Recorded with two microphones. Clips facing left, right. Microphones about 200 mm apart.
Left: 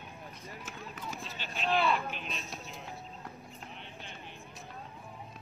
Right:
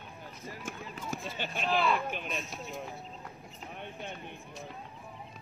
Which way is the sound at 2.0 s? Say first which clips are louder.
Right 4 dB; 50° right (ahead or behind).